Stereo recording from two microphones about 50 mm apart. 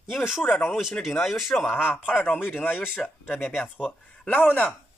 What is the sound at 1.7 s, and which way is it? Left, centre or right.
Speech, left.